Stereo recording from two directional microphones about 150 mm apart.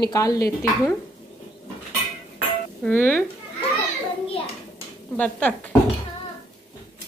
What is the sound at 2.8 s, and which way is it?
Speech, 15° left (ahead or behind).